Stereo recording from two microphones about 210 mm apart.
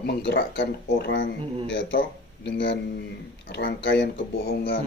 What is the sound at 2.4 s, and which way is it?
Speech, 55° left (ahead or behind).